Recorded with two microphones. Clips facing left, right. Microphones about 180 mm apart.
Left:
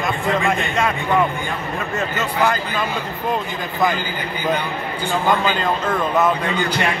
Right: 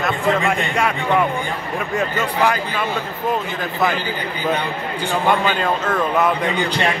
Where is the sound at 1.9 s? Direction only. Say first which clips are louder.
Right 3 dB; 10° right (ahead or behind).